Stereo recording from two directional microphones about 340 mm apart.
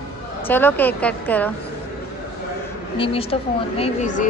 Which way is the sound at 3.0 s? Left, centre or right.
Centre.